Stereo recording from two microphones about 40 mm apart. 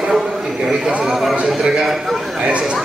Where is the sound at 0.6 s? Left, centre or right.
Centre.